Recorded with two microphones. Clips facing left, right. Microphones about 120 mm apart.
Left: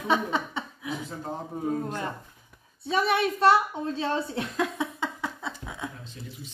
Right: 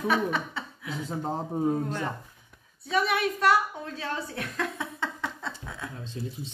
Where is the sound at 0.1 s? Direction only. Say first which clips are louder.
Left 4 dB; 20° left (ahead or behind).